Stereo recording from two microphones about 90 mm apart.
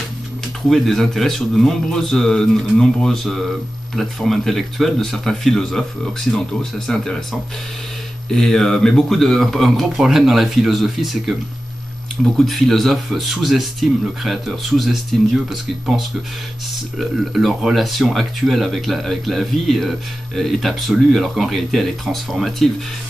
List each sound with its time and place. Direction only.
0.7 s speech: centre (ahead or behind)
8.3 s speech: 5° left (ahead or behind)
12.4 s speech: 5° left (ahead or behind)
17.0 s speech: centre (ahead or behind)